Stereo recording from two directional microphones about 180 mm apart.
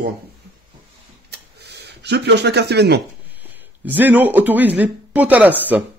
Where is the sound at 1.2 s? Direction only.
65° right (ahead or behind).